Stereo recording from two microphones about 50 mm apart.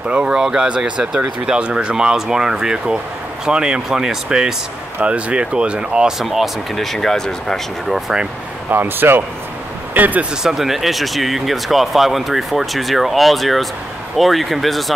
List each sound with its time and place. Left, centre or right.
0.1 s speech: centre
5.0 s speech: right
6.1 s speech: centre
8.6 s speech: right
9.9 s speech: right
10.4 s speech: centre